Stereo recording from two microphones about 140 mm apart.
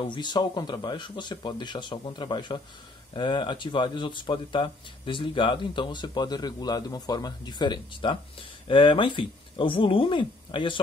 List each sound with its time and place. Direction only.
0.0 s speech: 35° left (ahead or behind)